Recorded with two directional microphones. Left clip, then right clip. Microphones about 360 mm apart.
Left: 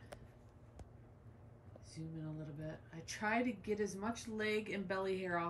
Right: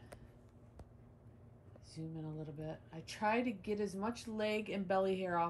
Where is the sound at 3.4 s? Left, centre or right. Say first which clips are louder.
Even; right.